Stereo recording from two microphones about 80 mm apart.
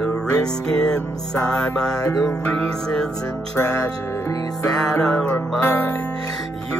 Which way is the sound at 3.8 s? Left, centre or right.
Left.